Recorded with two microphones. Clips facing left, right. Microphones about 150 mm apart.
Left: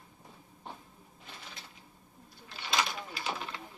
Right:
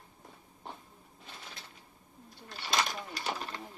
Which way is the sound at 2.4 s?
40° right (ahead or behind).